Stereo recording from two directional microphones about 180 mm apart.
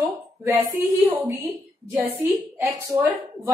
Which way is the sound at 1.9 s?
10° right (ahead or behind).